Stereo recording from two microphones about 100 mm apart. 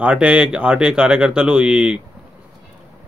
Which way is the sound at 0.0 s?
10° right (ahead or behind).